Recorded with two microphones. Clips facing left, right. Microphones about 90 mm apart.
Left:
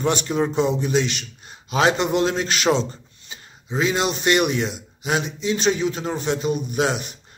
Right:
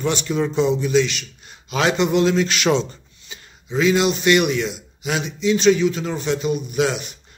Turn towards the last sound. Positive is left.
turn(degrees=40)  # may be behind; listen again after turning